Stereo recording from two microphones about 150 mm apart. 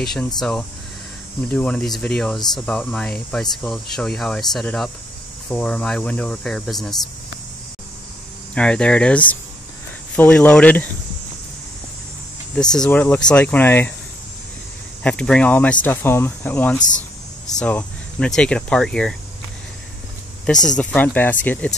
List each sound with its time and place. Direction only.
0.0 s speech: centre (ahead or behind)
8.5 s speech: 5° left (ahead or behind)
12.5 s speech: 5° left (ahead or behind)
15.0 s speech: 5° left (ahead or behind)
20.7 s speech: 10° left (ahead or behind)